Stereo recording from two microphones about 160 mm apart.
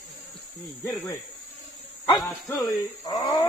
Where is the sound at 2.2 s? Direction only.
15° left (ahead or behind).